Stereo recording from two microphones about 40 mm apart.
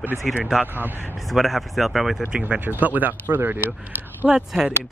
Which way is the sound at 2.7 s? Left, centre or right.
Right.